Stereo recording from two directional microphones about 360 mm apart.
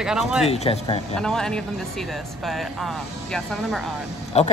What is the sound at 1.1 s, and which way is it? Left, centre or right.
Speech, centre.